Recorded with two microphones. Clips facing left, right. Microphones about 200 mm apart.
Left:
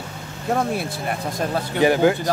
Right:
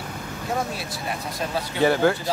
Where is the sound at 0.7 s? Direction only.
55° left (ahead or behind).